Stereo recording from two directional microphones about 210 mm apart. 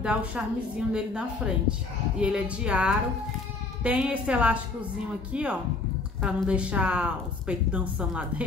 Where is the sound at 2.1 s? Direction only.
5° right (ahead or behind).